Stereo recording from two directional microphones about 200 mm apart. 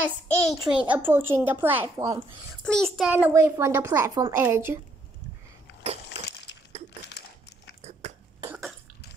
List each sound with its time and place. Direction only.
0.0 s a child's voice: 5° left (ahead or behind); by 2.2 s 15° right (ahead or behind)
2.6 s a child's voice: centre (ahead or behind)
6.5 s a sound: 60° left (ahead or behind)
8.4 s cough: 15° right (ahead or behind)